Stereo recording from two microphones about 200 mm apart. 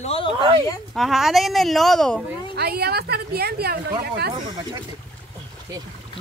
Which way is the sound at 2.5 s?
50° right (ahead or behind).